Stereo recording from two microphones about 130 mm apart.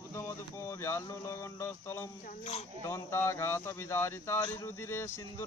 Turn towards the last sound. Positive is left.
turn(degrees=20)  # may be behind; listen again after turning